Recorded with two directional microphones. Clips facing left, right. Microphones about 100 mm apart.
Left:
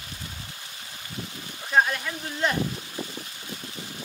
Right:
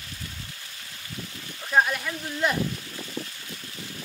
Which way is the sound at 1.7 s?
Centre (ahead or behind).